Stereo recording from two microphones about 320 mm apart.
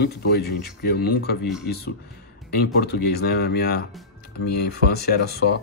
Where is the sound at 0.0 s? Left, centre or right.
Left.